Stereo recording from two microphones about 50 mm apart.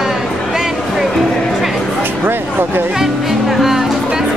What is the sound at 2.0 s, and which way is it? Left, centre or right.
Speech, right.